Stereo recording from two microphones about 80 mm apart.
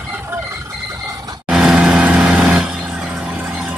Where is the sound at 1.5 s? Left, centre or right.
Centre.